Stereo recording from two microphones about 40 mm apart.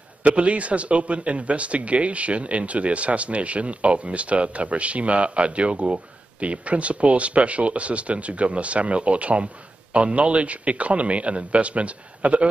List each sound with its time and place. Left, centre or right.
0.2 s a man's voice: right